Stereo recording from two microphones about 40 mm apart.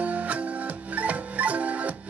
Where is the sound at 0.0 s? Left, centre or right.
Right.